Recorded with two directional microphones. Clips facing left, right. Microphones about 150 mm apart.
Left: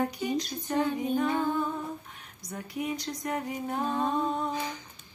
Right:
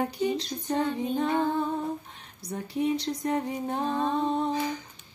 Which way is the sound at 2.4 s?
30° right (ahead or behind).